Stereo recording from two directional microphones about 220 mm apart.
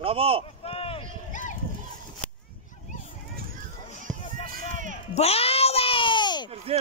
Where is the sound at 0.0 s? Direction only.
25° right (ahead or behind).